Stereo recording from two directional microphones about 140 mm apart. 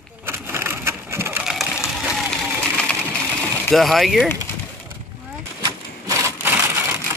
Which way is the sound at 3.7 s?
Centre (ahead or behind).